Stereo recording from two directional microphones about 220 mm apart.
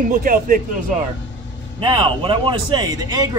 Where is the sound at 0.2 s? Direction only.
40° right (ahead or behind).